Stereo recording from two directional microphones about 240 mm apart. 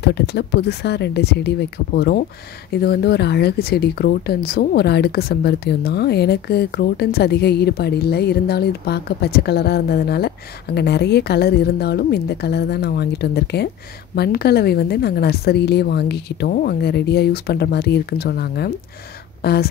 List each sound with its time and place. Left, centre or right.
0.0 s a woman's voice: left